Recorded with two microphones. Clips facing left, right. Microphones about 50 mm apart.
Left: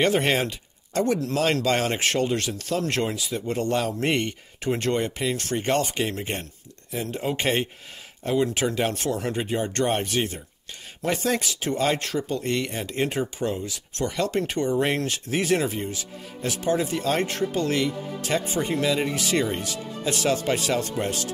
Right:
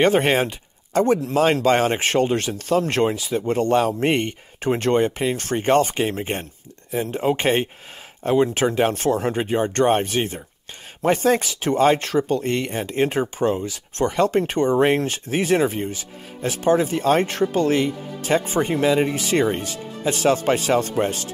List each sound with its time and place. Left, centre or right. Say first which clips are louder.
0.0 s speech: right 4 dB; right